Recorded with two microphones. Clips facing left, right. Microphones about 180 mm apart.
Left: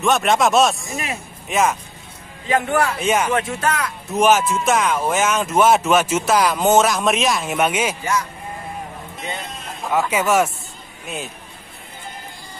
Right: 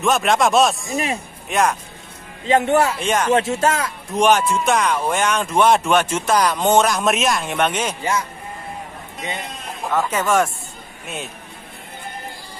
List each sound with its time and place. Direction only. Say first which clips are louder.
0.0 s speech: even; centre (ahead or behind)
2.4 s speech: right 3 dB; 25° right (ahead or behind)
3.0 s speech: left 1 dB; 5° left (ahead or behind)
3.3 s speech: right 4 dB; 25° right (ahead or behind)
4.1 s speech: even; 5° left (ahead or behind)
8.0 s speech: even; 25° right (ahead or behind)
9.9 s speech: left 1 dB; 10° left (ahead or behind)